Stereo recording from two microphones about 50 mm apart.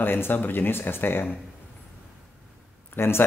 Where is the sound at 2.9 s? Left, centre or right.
Left.